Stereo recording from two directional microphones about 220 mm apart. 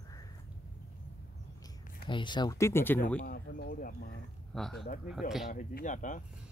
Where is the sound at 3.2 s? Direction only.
40° left (ahead or behind).